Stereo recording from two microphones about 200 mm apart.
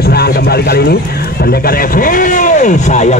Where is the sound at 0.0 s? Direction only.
50° left (ahead or behind).